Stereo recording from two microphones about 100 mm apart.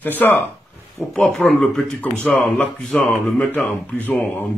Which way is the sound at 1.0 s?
35° left (ahead or behind).